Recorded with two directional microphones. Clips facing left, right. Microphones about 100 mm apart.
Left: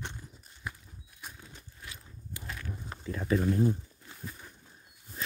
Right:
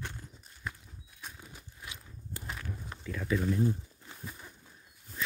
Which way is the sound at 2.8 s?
30° left (ahead or behind).